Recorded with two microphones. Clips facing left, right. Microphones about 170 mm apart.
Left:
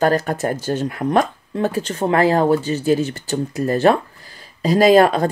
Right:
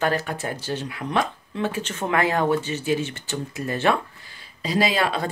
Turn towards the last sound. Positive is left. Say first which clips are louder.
# left 10 dB
turn(degrees=45)  # may be behind; listen again after turning